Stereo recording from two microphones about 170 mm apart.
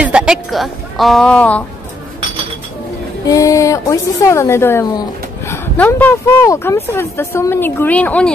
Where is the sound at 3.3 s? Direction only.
20° left (ahead or behind).